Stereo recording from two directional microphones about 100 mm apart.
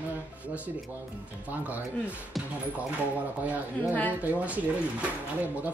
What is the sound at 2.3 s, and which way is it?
Speech, centre (ahead or behind).